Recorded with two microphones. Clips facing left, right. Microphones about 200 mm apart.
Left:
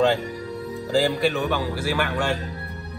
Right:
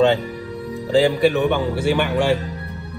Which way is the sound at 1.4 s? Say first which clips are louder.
Right 6 dB; 25° right (ahead or behind).